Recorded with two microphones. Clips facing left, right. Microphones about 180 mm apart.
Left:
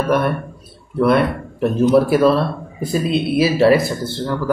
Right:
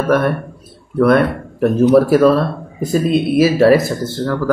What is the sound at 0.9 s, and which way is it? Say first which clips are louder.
Speech: right 3 dB; 50° right (ahead or behind).